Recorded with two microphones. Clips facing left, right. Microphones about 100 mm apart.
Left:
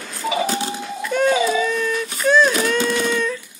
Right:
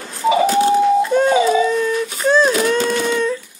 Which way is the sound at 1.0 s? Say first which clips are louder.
Right 4 dB; 25° right (ahead or behind).